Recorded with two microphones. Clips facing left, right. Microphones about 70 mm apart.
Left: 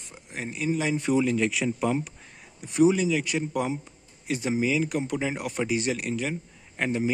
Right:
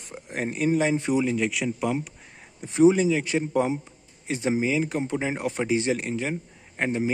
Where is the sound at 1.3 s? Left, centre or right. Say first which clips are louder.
Even; centre.